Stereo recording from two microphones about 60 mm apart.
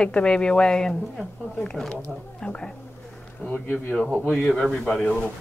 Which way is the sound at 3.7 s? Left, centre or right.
Centre.